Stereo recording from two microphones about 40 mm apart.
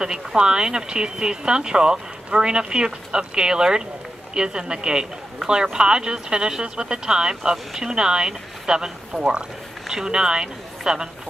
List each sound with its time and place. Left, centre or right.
0.0 s speech: centre